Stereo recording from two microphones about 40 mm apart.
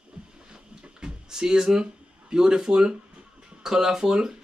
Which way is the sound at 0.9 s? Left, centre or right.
Centre.